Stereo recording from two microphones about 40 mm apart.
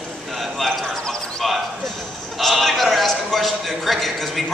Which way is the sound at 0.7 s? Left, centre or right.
Centre.